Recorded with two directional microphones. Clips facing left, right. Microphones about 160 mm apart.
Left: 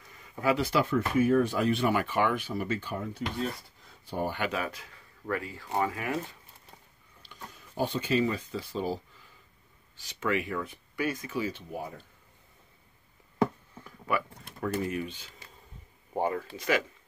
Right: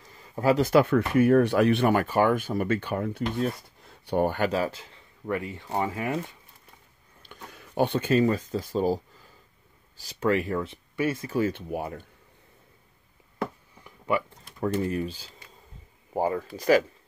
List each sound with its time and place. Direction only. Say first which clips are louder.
0.1 s speech: right 5 dB; 35° right (ahead or behind); by 4.3 s 70° right (ahead or behind)
4.3 s speech: right 6 dB; 40° right (ahead or behind)
7.2 s speech: right 2 dB; 60° right (ahead or behind); by 10.7 s 35° right (ahead or behind)
10.7 s speech: right 4 dB; 25° right (ahead or behind)
11.2 s speech: right 7 dB; 50° right (ahead or behind)
13.8 s speech: right 4 dB; 25° right (ahead or behind)